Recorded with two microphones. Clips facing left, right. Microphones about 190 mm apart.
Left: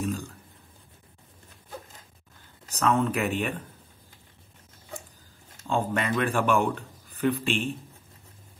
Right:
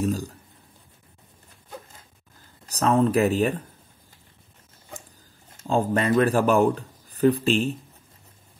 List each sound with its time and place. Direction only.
0.0 s speech: 35° right (ahead or behind)
2.6 s speech: 35° right (ahead or behind)
5.7 s speech: 40° right (ahead or behind)